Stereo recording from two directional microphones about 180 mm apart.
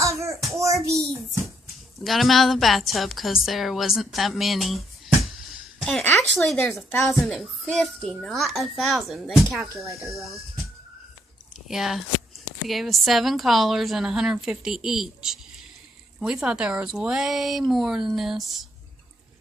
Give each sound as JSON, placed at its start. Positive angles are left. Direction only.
{"t": 0.0, "sound": "child singing", "side_deg": -15}
{"t": 0.8, "sound": "a child's voice", "side_deg": -15}
{"t": 2.0, "sound": "a woman's voice", "side_deg": 0}
{"t": 11.6, "sound": "a woman's voice", "side_deg": 0}